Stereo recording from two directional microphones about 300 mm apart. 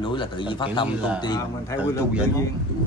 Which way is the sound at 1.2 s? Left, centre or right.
Centre.